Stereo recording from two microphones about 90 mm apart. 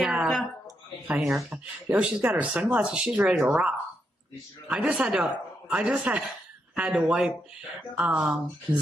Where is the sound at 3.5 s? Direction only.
15° right (ahead or behind).